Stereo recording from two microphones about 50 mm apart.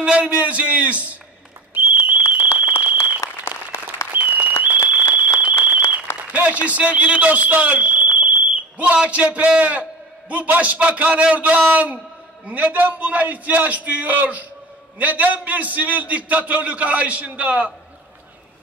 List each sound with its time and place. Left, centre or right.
0.0 s a man's voice: right
1.7 s whistle: right
3.5 s applause: left
4.6 s a sound: right
6.3 s a man's voice: right